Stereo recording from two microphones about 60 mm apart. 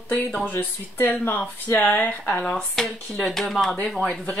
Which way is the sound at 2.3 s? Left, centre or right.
Centre.